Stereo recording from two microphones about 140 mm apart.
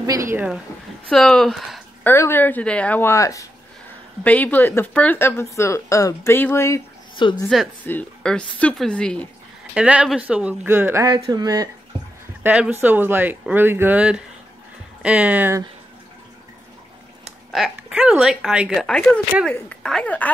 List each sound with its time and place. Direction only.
1.0 s speech: 5° left (ahead or behind)
2.0 s speech: 15° left (ahead or behind)
4.2 s speech: 10° left (ahead or behind)
7.2 s a woman's voice: 35° left (ahead or behind)
7.8 s speech: 10° left (ahead or behind)
9.8 s speech: 10° right (ahead or behind)
11.1 s speech: 30° right (ahead or behind)
12.4 s speech: 10° right (ahead or behind)
17.7 s speech: 10° right (ahead or behind); by 20.2 s 10° left (ahead or behind)